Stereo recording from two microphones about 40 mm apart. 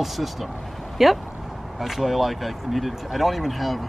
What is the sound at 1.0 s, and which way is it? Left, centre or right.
Speech, centre.